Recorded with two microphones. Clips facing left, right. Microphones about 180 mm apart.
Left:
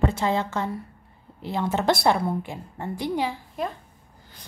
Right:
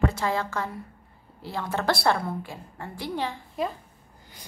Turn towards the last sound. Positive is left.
turn(degrees=10)  # may be behind; listen again after turning